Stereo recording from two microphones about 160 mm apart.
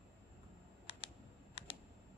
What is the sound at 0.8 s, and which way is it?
Computer keyboard, 35° left (ahead or behind).